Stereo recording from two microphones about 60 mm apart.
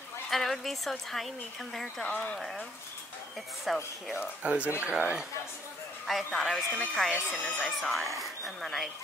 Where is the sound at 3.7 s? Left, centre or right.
Centre.